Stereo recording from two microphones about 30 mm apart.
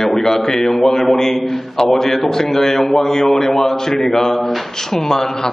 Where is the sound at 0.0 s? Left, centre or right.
Centre.